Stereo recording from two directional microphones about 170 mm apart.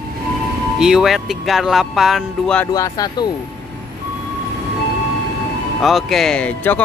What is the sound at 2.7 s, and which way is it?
Speech, 20° left (ahead or behind).